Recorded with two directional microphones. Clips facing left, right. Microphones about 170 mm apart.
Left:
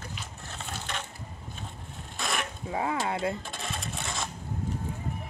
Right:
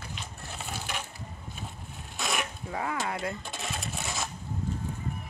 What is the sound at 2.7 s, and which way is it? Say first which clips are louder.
Speech: left 4 dB; 25° left (ahead or behind).